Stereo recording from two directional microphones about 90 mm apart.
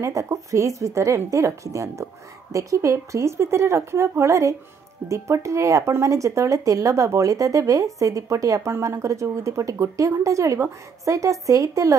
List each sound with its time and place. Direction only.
0.0 s speech: 35° right (ahead or behind)